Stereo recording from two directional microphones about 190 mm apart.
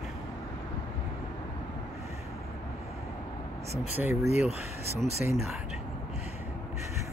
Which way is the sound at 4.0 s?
15° right (ahead or behind).